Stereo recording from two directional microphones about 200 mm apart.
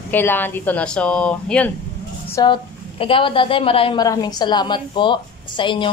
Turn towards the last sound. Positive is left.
turn(degrees=25)  # may be behind; listen again after turning